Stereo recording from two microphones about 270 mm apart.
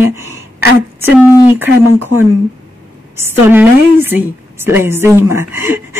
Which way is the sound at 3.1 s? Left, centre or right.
Centre.